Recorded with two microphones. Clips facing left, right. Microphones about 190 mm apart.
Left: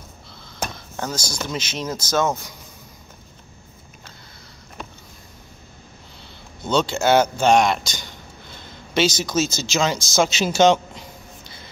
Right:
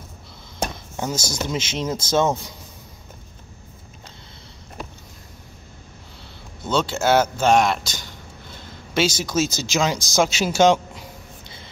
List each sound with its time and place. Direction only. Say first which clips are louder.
0.9 s speech: right 2 dB; 20° right (ahead or behind)
6.6 s speech: left 1 dB; 5° right (ahead or behind)